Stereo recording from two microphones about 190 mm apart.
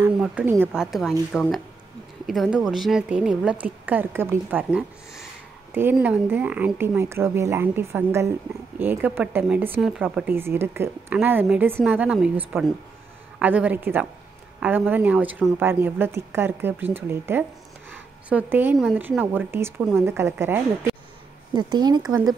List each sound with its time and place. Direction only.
0.0 s speech: 10° right (ahead or behind)
1.3 s a woman's voice: centre (ahead or behind); by 22.0 s 20° right (ahead or behind)